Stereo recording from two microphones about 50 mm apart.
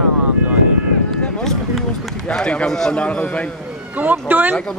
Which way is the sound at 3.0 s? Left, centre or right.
Left.